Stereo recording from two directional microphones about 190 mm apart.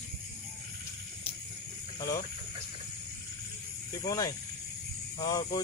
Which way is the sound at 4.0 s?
20° left (ahead or behind).